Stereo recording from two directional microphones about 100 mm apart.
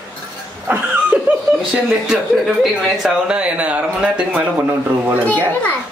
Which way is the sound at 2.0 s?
5° right (ahead or behind).